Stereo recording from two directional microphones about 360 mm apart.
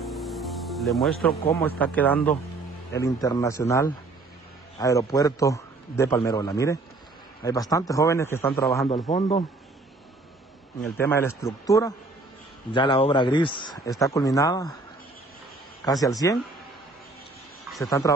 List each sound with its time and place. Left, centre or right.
0.0 s music: centre
1.4 s speech: left
1.8 s a man's voice: centre
10.8 s a man's voice: centre
15.8 s a man's voice: centre
17.6 s speech: centre